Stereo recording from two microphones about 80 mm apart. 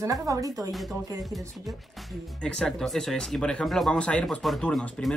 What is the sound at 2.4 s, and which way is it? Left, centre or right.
Speech, centre.